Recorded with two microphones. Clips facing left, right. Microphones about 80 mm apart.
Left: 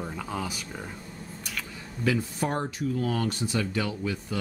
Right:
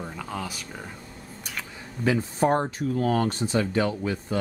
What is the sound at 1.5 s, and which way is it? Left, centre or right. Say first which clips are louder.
Speech: right 2 dB; right.